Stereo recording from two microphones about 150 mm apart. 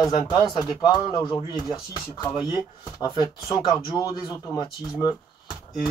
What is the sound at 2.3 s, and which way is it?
Speech, 30° left (ahead or behind).